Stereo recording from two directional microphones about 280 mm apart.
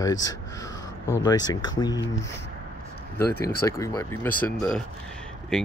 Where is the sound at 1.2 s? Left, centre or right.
Centre.